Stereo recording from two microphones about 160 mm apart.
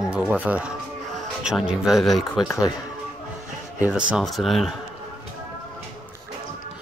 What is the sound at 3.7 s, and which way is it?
Speech, 10° right (ahead or behind).